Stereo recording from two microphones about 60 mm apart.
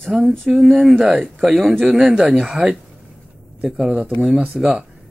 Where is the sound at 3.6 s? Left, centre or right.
Centre.